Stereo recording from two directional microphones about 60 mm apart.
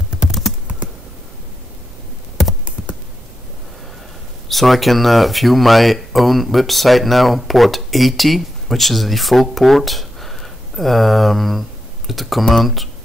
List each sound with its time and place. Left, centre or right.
0.3 s computer keyboard: centre
4.5 s speech: centre